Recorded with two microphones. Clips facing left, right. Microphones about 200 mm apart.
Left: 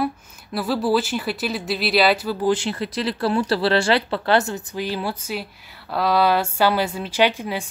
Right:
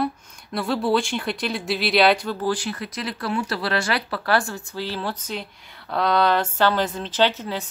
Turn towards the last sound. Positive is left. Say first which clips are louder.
# left 2 dB
turn(degrees=10)  # may be behind; listen again after turning